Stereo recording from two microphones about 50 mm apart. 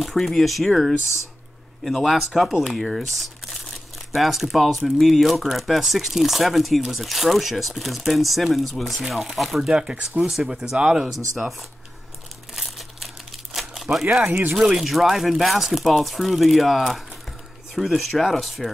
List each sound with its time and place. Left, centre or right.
0.0 s speech: centre
9.6 s speech: centre
12.5 s crumpling: centre
14.2 s speech: right
14.8 s speech: centre